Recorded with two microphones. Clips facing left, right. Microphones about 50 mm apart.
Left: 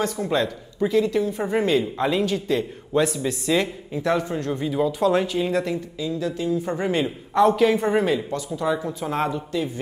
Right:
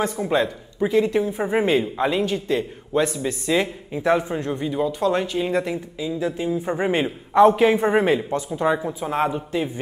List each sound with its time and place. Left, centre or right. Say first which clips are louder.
0.0 s speech: right 2 dB; centre
2.0 s speech: right 1 dB; centre
4.6 s speech: left 2 dB; centre; by 8.8 s right
8.8 s speech: right 2 dB; centre
9.3 s speech: right 1 dB; right